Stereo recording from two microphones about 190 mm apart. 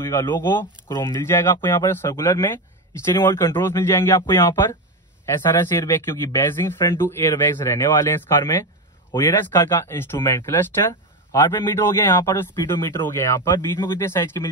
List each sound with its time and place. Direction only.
0.0 s speech: 15° left (ahead or behind)